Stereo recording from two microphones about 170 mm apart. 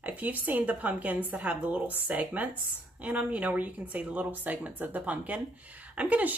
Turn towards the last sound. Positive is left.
turn(degrees=-10)  # may be behind; listen again after turning